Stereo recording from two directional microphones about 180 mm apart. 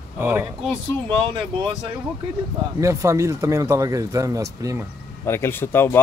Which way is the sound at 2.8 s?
15° right (ahead or behind).